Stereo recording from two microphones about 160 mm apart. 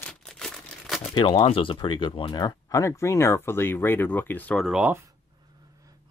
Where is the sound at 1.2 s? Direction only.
30° left (ahead or behind); by 4.6 s 10° left (ahead or behind).